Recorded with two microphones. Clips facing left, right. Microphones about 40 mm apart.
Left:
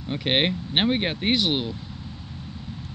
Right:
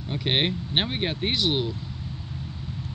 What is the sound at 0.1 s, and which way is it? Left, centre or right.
Speech, centre.